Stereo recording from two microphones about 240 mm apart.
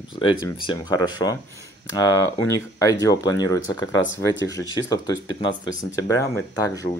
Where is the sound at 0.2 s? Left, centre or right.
Centre.